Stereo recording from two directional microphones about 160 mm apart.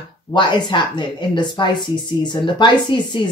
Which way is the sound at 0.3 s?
30° left (ahead or behind).